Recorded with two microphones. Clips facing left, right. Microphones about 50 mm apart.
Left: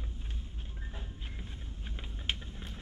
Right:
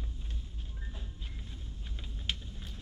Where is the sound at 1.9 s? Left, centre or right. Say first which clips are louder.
Left 1 dB; left.